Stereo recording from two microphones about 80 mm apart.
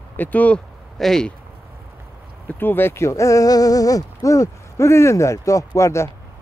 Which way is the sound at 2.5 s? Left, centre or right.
Left.